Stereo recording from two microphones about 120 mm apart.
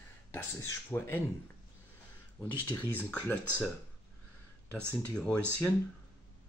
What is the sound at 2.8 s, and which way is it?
Speech, 15° left (ahead or behind).